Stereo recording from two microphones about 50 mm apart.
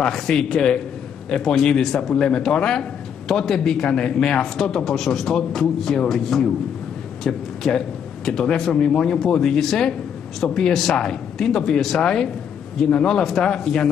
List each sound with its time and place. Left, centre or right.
0.0 s a man's voice: centre